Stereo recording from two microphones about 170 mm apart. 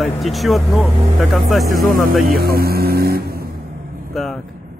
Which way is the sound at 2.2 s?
60° right (ahead or behind).